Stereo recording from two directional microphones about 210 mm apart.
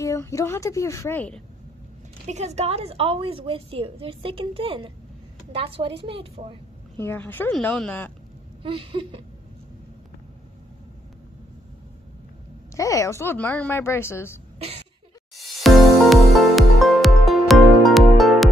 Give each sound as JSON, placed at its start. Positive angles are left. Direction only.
{"t": 0.0, "sound": "a woman's voice", "side_deg": 15}
{"t": 2.2, "sound": "a woman's voice", "side_deg": -30}
{"t": 7.0, "sound": "a woman's voice", "side_deg": 10}
{"t": 8.6, "sound": "a woman's voice", "side_deg": -25}
{"t": 12.7, "sound": "a woman's voice", "side_deg": 15}
{"t": 15.3, "sound": "music", "side_deg": 0}